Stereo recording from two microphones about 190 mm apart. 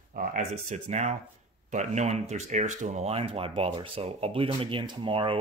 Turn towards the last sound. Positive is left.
turn(degrees=-30)  # may be behind; listen again after turning